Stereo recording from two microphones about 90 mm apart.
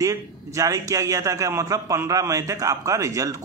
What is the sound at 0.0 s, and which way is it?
Speech, 40° right (ahead or behind).